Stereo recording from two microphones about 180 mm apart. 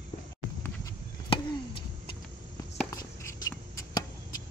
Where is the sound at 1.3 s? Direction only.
30° left (ahead or behind).